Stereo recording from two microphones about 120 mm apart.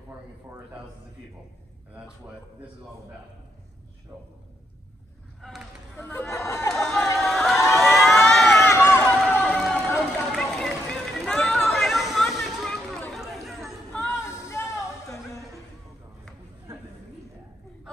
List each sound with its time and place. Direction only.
4.1 s a man's voice: 5° left (ahead or behind)
5.9 s speech: 20° left (ahead or behind)
6.7 s a sound: 5° left (ahead or behind)
7.6 s a sound: 25° left (ahead or behind)
8.0 s crowd: centre (ahead or behind)
8.6 s run: 20° left (ahead or behind)
9.3 s a sound: 10° left (ahead or behind)
13.1 s chatter: centre (ahead or behind)
14.1 s music: 25° left (ahead or behind)